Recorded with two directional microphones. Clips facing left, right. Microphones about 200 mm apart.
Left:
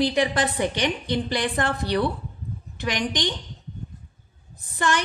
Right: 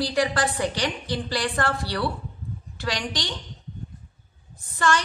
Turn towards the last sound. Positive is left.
turn(degrees=15)  # may be behind; listen again after turning